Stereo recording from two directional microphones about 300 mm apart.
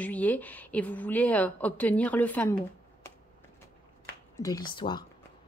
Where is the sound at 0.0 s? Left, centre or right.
Centre.